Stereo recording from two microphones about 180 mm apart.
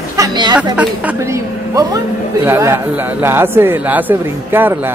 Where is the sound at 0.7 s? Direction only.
10° right (ahead or behind).